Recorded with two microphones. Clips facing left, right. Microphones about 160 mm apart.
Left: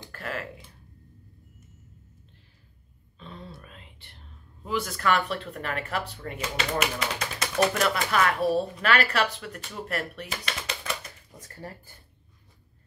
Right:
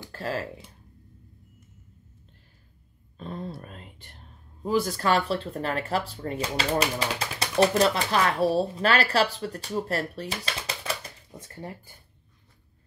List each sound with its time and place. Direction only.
0.1 s speech: 25° right (ahead or behind)
3.2 s speech: 45° right (ahead or behind); by 11.9 s 20° right (ahead or behind)